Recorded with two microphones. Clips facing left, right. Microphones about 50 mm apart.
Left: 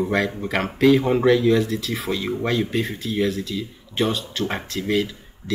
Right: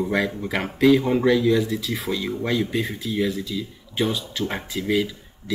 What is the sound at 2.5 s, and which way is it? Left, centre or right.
Speech, centre.